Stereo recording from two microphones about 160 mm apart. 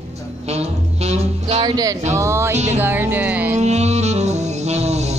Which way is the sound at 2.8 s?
10° right (ahead or behind).